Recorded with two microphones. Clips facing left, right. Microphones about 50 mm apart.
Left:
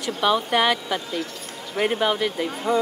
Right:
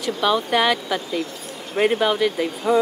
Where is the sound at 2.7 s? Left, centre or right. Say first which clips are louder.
Right 4 dB; centre.